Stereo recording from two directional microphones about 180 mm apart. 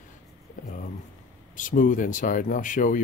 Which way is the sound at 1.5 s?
50° left (ahead or behind).